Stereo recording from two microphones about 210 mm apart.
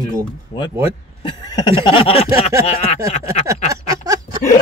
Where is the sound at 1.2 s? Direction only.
20° left (ahead or behind).